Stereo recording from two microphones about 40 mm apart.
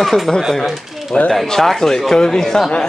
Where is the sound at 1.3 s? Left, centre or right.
Centre.